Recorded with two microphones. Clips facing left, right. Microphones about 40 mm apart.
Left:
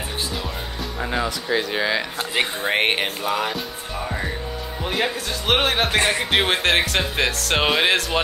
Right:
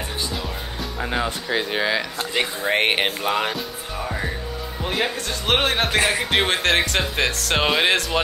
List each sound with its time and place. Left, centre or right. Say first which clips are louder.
0.3 s music: even; centre
1.7 s speech: even; centre
2.0 s speech: left 1 dB; centre
3.0 s music: right 1 dB; right
3.5 s music: even; centre
4.8 s speech: even; centre